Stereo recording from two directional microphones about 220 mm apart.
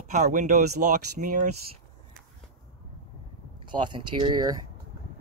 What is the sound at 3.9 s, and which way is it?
Speech, 20° right (ahead or behind).